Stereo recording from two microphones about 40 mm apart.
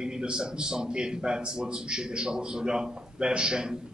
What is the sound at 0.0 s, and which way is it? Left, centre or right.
Speech, right.